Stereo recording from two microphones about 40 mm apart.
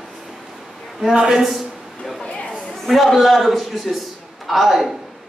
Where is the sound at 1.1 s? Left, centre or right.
Right.